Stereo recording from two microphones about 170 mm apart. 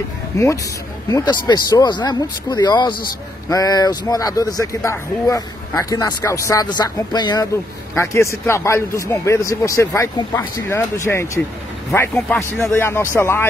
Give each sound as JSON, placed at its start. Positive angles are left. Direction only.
{"t": 1.0, "sound": "speech", "side_deg": 20}